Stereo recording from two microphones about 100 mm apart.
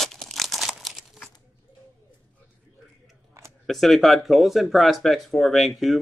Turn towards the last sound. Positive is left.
turn(degrees=0)  # may be behind; listen again after turning